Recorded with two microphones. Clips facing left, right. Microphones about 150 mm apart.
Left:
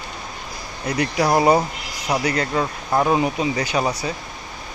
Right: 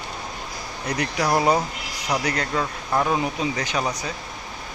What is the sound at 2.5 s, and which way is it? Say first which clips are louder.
Speech: left 3 dB; 20° left (ahead or behind).